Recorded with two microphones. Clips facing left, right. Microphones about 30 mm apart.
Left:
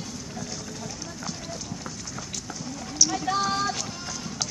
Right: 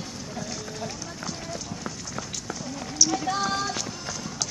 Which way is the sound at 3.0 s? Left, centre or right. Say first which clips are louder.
Even; centre.